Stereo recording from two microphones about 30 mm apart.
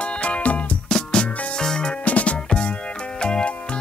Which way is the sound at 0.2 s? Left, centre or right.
Left.